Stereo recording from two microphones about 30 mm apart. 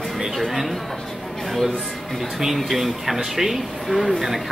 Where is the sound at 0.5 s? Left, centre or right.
Centre.